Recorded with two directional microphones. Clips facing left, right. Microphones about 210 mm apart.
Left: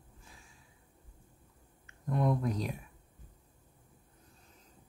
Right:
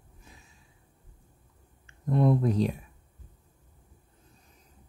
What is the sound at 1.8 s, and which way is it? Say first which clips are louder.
Speech: right 6 dB; 30° right (ahead or behind).